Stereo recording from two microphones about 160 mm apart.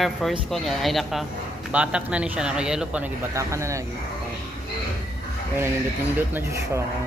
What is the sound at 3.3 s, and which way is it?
Speech, 20° right (ahead or behind).